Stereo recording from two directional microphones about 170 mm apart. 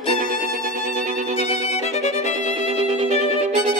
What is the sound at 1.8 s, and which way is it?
Music, 40° left (ahead or behind).